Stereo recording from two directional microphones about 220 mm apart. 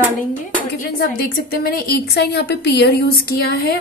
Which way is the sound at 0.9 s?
45° left (ahead or behind).